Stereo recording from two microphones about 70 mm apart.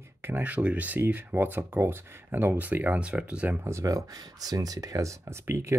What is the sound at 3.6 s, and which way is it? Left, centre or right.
Speech, right.